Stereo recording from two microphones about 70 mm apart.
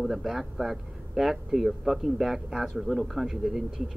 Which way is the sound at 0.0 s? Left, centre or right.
Centre.